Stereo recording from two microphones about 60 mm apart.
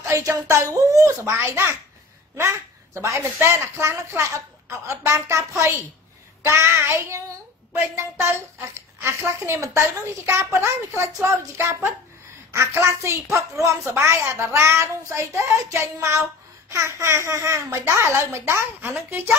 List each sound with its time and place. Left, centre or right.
0.2 s child singing: right
19.0 s speech: right